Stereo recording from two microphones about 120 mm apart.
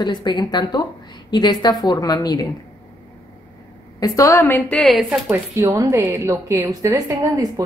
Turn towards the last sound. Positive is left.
turn(degrees=-30)  # may be behind; listen again after turning